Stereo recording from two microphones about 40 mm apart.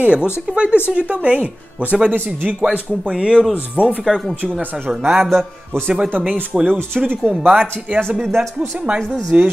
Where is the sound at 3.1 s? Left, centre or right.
Right.